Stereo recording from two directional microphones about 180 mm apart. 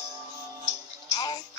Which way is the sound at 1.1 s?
25° left (ahead or behind).